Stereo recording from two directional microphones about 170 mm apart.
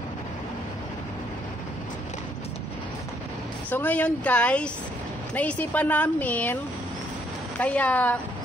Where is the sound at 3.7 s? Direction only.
10° left (ahead or behind).